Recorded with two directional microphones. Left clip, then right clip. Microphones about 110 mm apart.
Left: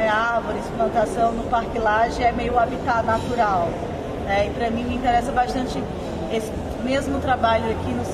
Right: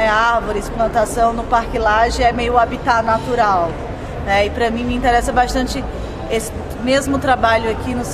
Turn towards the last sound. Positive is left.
turn(degrees=-30)  # may be behind; listen again after turning